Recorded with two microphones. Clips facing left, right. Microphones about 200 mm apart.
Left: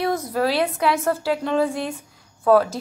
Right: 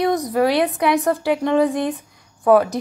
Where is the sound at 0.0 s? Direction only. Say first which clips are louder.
Right 4 dB; 15° right (ahead or behind).